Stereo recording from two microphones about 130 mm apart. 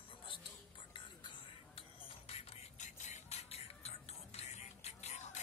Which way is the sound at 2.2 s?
60° left (ahead or behind).